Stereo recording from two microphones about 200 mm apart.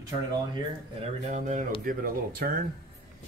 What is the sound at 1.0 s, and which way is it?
Speech, 35° right (ahead or behind).